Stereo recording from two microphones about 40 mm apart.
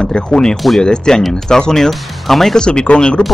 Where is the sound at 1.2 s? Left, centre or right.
Centre.